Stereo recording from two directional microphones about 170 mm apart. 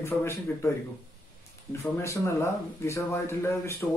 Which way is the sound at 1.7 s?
15° left (ahead or behind).